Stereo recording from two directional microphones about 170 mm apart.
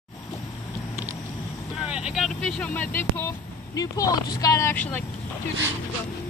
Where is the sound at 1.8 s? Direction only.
5° right (ahead or behind); by 5.0 s 10° left (ahead or behind).